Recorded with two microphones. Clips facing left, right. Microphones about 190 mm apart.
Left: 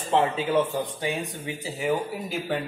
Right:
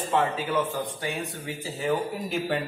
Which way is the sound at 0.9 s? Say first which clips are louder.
Left 2 dB; 15° left (ahead or behind).